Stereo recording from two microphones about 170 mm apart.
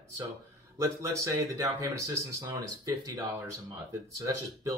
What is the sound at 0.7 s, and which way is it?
Speech, 15° right (ahead or behind).